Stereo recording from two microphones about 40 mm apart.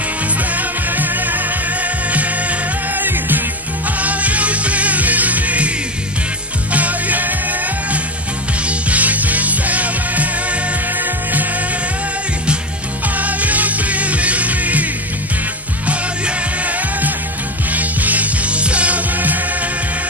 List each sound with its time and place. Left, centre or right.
0.6 s music: right
3.0 s music: right
4.0 s music: right
6.7 s music: right
8.6 s music: right
13.2 s music: right
15.9 s music: right